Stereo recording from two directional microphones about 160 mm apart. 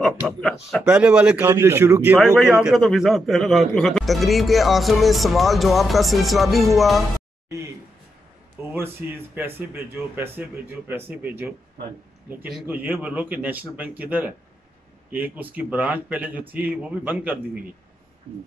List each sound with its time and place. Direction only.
0.8 s speech: 10° right (ahead or behind)
2.1 s a man's voice: 5° right (ahead or behind)
7.4 s speech: 20° right (ahead or behind)
8.7 s speech: 15° right (ahead or behind)